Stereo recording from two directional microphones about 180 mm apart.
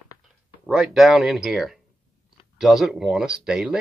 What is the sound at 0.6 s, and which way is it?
Speech, centre (ahead or behind).